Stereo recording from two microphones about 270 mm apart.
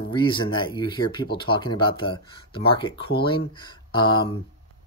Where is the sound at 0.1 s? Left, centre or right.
Centre.